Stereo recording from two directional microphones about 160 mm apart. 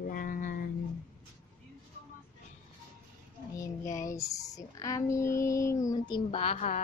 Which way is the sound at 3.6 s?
20° left (ahead or behind).